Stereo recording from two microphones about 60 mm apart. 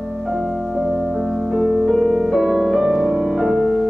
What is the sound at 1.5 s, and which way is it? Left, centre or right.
Music, centre.